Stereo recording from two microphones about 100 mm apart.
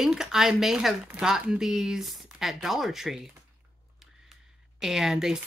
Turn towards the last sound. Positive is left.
turn(degrees=-5)  # may be behind; listen again after turning